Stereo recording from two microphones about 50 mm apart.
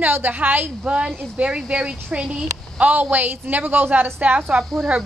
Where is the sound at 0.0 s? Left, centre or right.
Right.